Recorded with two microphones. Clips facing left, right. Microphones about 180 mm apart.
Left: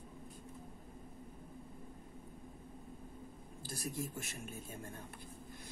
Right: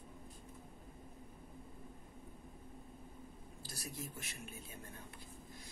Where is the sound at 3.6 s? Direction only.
50° left (ahead or behind).